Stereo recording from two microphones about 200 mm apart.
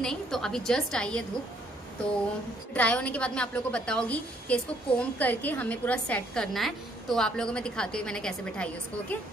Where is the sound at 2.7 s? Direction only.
5° left (ahead or behind).